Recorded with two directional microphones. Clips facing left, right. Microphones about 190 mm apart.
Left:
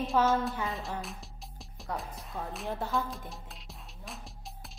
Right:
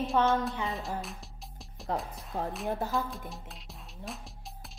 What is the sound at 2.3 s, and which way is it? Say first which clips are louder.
Speech: right 5 dB; 40° right (ahead or behind).